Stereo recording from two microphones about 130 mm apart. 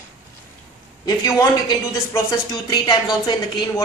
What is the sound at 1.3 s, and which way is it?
A woman's voice, 25° left (ahead or behind).